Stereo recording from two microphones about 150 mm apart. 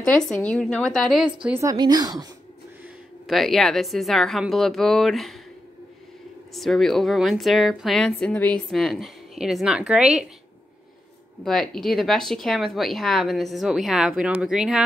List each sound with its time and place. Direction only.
0.0 s a woman's voice: 5° left (ahead or behind)
1.6 s a woman's voice: 25° right (ahead or behind)
3.3 s a woman's voice: centre (ahead or behind)
6.5 s a woman's voice: centre (ahead or behind)
11.4 s a woman's voice: centre (ahead or behind)